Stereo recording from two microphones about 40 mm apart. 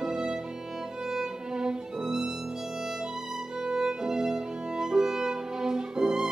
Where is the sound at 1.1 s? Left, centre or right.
Centre.